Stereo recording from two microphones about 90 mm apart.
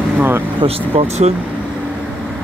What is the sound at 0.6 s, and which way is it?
Speech, 90° right.